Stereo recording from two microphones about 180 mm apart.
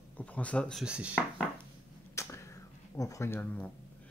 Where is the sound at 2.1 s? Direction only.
15° left (ahead or behind).